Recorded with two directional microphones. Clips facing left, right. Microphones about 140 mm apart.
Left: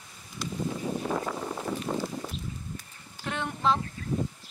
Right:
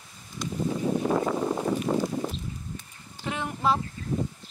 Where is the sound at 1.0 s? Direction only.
45° right (ahead or behind).